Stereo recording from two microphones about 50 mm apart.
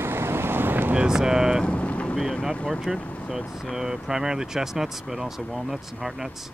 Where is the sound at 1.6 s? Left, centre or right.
Left.